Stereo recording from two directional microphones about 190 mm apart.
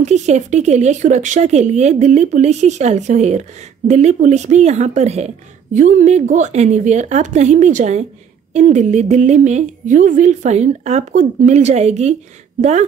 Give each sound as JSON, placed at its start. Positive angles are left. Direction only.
{"t": 0.0, "sound": "speech", "side_deg": -40}